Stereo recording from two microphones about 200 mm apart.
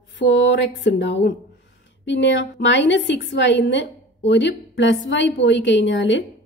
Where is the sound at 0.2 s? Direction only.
60° left (ahead or behind).